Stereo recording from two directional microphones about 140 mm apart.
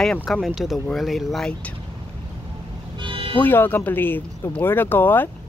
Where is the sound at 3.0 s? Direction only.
40° right (ahead or behind).